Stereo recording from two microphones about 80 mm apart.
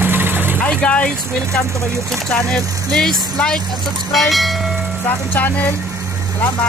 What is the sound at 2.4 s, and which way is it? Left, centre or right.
Speech, centre.